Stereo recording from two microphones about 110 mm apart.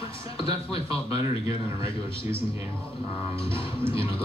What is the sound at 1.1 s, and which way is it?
Speech, 30° right (ahead or behind).